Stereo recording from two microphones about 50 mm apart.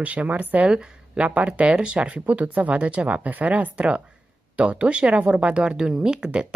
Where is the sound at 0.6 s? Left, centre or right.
Centre.